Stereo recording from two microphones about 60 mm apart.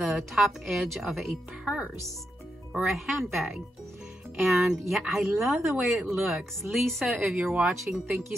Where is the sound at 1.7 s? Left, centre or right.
Centre.